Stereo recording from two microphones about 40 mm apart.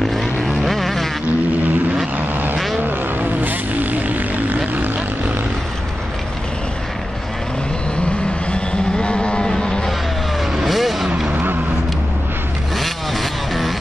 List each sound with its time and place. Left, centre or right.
0.1 s vehicle: centre
3.2 s vehicle: right
8.5 s a sound: left
9.5 s vehicle: centre
10.6 s vehicle: centre
12.7 s vehicle: centre